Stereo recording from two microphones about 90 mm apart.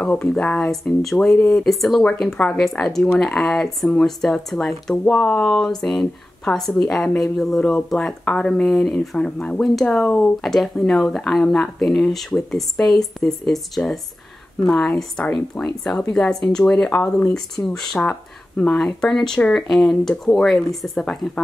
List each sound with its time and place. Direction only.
0.3 s speech: 10° left (ahead or behind)